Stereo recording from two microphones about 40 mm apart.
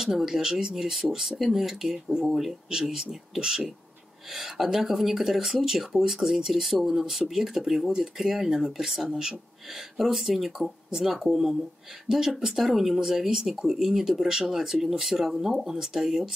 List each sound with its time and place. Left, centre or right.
0.0 s speech: centre
2.3 s speech: centre